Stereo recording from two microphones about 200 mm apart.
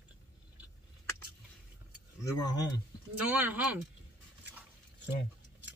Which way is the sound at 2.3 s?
20° left (ahead or behind).